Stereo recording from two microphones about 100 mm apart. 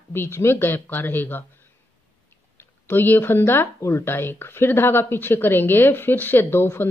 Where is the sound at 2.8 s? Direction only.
20° left (ahead or behind).